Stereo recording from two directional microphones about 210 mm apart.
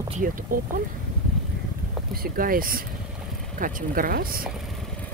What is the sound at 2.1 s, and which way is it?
Speech, 45° right (ahead or behind).